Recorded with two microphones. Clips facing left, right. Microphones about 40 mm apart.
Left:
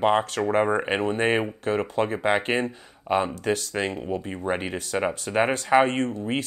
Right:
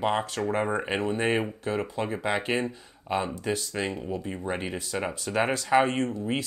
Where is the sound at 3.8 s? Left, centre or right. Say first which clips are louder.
Left 3 dB; left.